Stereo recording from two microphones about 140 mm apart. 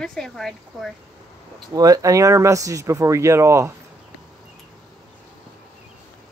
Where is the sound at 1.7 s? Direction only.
25° right (ahead or behind).